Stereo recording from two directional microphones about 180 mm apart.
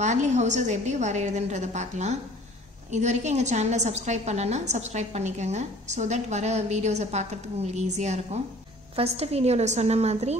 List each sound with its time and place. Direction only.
0.0 s a woman's voice: 40° right (ahead or behind)